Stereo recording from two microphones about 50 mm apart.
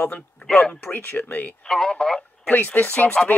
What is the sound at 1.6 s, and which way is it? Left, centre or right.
Speech, centre.